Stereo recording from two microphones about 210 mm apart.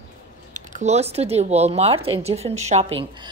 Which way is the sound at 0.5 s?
35° right (ahead or behind).